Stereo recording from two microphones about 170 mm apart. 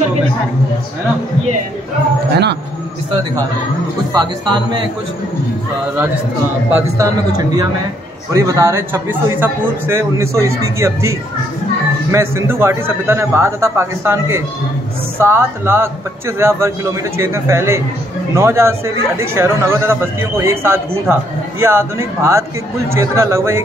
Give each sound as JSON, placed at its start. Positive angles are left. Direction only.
{"t": 4.1, "sound": "speech", "side_deg": -25}
{"t": 6.7, "sound": "speech", "side_deg": -20}